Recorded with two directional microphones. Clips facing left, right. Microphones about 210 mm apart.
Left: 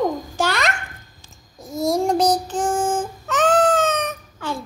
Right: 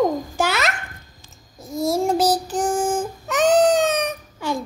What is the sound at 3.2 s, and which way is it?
Baby cry, 15° right (ahead or behind).